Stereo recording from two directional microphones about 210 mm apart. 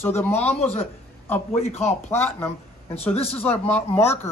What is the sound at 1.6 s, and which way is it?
Speech, 30° left (ahead or behind).